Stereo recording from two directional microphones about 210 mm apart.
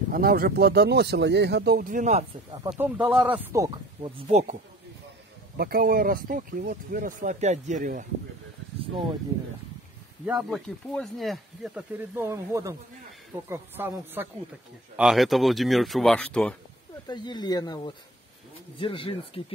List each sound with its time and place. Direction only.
0.1 s speech: 45° right (ahead or behind)
2.7 s speech: 5° right (ahead or behind); by 4.1 s 20° right (ahead or behind)
4.3 s speech: 35° right (ahead or behind)
5.6 s speech: 45° right (ahead or behind)
10.2 s speech: centre (ahead or behind)
17.1 s speech: 20° left (ahead or behind)